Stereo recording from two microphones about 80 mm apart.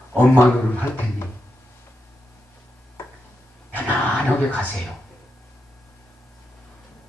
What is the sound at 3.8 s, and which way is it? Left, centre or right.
Speech, left.